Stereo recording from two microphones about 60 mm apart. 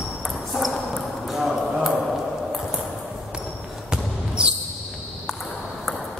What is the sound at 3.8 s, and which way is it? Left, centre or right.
Basketball bounce, centre.